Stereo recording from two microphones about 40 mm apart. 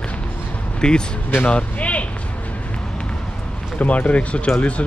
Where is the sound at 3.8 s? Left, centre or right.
Left.